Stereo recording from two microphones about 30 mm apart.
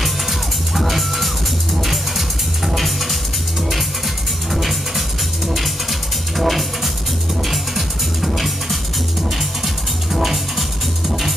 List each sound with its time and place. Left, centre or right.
0.0 s music: centre
4.6 s music: centre
10.1 s music: centre